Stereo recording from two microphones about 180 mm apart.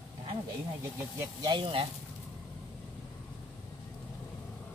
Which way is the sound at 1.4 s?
25° right (ahead or behind).